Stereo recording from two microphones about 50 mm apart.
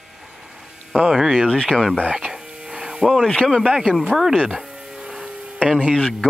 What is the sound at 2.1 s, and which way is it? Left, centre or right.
Insect, centre.